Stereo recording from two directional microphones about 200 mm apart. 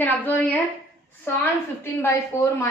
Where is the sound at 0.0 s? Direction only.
10° left (ahead or behind).